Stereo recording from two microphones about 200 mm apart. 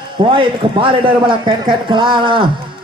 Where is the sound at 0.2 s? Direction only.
25° right (ahead or behind).